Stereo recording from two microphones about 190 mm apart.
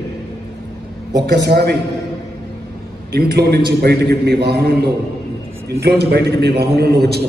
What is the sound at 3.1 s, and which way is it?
A man's voice, 60° right (ahead or behind).